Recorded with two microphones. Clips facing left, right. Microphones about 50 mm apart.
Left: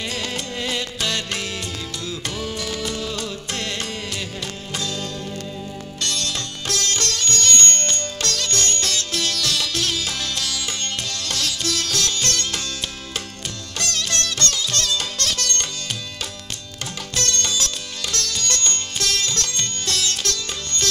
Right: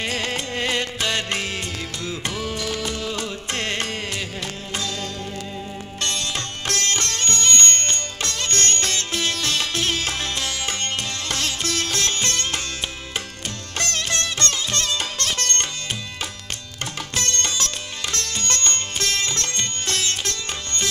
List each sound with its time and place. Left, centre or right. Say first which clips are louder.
0.0 s music: right 2 dB; right
1.0 s music: right 1 dB; right
5.9 s sitar: even; right
6.7 s music: even; right
8.5 s music: right 1 dB; right
13.7 s music: right 1 dB; right
17.1 s music: left 2 dB; right